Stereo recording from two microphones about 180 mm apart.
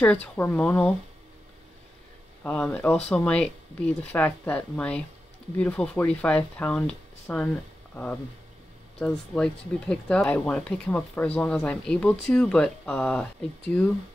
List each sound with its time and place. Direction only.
0.0 s speech: 5° left (ahead or behind)
2.4 s speech: 5° left (ahead or behind)